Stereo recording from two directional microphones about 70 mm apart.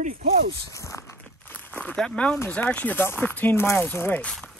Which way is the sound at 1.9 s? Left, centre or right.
Centre.